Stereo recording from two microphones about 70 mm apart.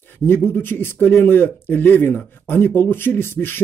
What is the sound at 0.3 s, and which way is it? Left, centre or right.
Speech, left.